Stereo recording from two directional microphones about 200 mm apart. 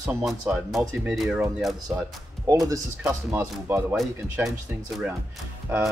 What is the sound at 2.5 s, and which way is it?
Speech, 15° right (ahead or behind).